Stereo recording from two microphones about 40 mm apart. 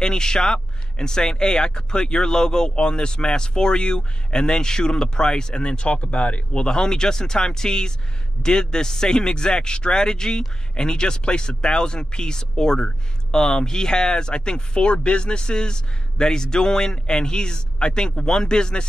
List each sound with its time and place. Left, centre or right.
0.0 s speech: centre